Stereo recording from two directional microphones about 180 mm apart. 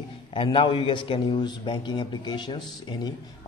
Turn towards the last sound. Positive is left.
turn(degrees=25)  # may be behind; listen again after turning